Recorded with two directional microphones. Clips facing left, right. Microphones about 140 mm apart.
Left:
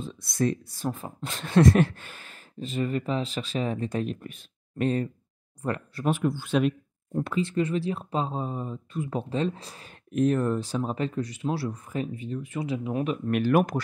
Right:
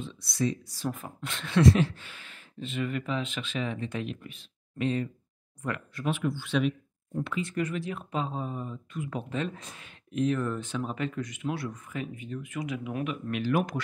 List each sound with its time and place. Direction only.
0.0 s speech: 50° left (ahead or behind)
0.8 s speech: 30° left (ahead or behind)
7.4 s speech: 30° left (ahead or behind)
13.3 s speech: 50° left (ahead or behind)